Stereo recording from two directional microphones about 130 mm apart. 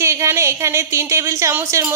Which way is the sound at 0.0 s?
20° right (ahead or behind).